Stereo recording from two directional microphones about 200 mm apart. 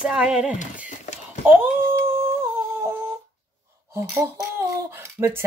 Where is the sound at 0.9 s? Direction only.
35° left (ahead or behind).